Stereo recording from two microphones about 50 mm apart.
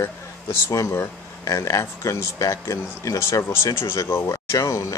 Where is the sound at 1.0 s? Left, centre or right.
Left.